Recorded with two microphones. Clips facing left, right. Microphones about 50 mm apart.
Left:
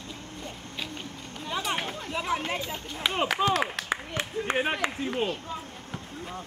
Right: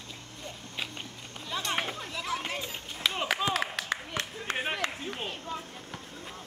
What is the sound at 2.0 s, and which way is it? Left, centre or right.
Chatter, left.